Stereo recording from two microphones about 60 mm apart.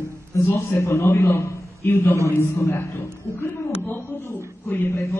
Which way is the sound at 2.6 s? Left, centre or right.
Left.